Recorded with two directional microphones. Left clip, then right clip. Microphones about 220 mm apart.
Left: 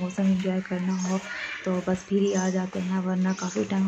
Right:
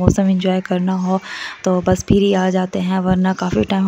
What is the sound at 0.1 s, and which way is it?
Speech, 50° right (ahead or behind).